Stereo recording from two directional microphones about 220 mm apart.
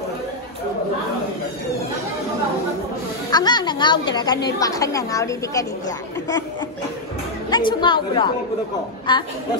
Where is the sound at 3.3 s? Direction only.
20° left (ahead or behind).